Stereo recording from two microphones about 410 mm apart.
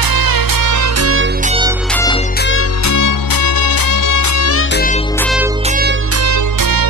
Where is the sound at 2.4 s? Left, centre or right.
Left.